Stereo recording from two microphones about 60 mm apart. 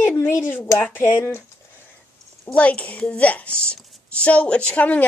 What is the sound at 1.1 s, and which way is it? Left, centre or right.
Speech, left.